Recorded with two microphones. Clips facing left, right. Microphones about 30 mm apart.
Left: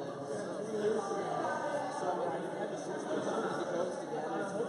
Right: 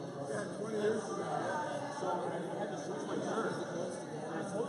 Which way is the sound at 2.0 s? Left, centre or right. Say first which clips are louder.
Even; centre.